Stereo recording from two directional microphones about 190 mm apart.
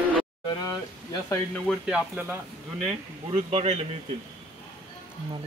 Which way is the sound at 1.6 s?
5° right (ahead or behind).